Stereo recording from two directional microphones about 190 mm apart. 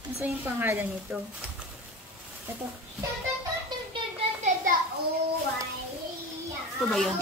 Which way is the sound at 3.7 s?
25° right (ahead or behind).